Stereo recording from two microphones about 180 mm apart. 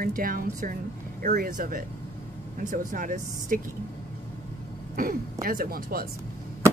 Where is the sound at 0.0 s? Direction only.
50° right (ahead or behind).